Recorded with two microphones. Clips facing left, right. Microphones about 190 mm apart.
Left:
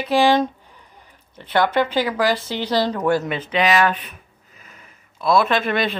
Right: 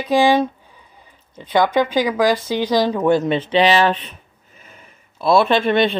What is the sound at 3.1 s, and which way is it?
Speech, 25° right (ahead or behind).